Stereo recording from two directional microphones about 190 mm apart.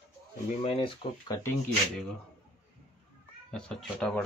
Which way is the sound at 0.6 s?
30° left (ahead or behind).